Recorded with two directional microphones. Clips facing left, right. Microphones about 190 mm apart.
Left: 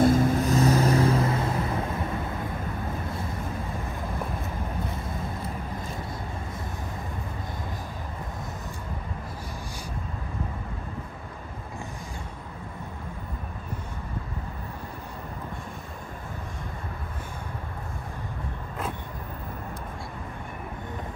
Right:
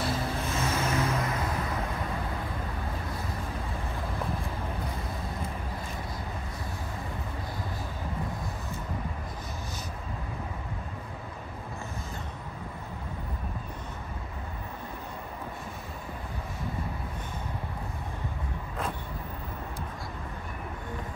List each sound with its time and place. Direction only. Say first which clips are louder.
0.0 s vehicle: left 11 dB; 50° left (ahead or behind); by 1.7 s 30° left (ahead or behind)